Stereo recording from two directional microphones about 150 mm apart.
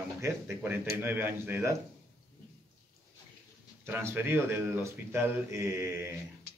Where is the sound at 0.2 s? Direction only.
15° right (ahead or behind).